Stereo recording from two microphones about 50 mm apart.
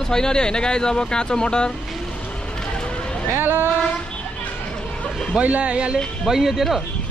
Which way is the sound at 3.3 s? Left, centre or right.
Right.